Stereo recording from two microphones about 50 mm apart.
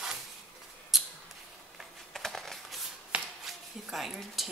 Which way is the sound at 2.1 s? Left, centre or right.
Centre.